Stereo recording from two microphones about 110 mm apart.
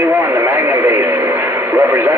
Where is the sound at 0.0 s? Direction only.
20° right (ahead or behind).